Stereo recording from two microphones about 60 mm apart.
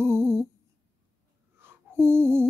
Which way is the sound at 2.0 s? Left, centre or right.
Right.